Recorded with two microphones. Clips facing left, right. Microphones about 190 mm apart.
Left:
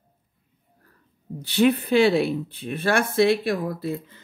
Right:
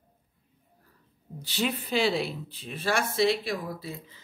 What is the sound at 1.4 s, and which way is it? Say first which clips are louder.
Speech: left 11 dB; 60° left (ahead or behind).